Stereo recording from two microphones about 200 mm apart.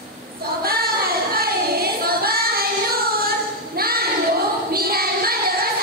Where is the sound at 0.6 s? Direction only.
50° right (ahead or behind).